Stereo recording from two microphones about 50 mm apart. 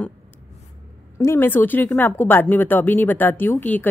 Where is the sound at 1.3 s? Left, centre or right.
Left.